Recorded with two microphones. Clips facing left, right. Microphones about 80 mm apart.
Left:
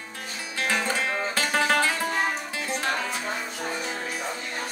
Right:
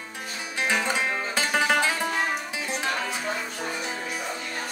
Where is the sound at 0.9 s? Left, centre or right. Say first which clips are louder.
Even; centre.